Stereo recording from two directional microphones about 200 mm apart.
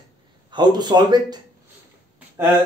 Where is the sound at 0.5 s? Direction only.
20° right (ahead or behind).